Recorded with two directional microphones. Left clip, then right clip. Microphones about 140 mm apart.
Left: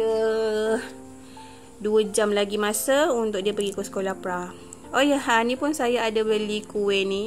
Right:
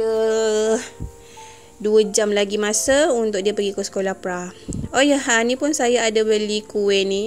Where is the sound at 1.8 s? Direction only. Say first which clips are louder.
Right 5 dB; 30° right (ahead or behind).